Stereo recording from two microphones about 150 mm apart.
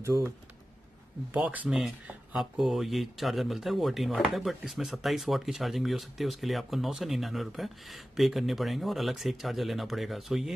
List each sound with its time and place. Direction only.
0.0 s speech: 20° right (ahead or behind)
1.3 s speech: 10° right (ahead or behind)